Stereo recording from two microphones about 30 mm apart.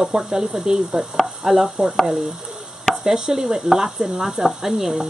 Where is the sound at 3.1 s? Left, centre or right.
Centre.